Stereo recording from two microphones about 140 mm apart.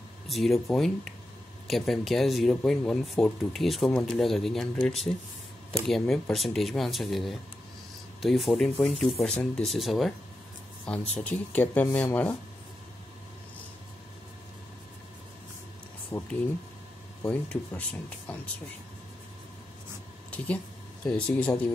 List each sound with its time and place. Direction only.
0.3 s speech: centre (ahead or behind)
10.9 s speech: 10° left (ahead or behind)
16.1 s speech: 15° left (ahead or behind)
20.2 s speech: 10° left (ahead or behind)